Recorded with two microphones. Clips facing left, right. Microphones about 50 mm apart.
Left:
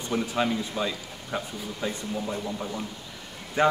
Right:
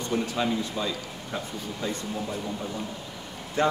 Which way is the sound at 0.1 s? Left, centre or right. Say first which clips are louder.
Left 1 dB; centre.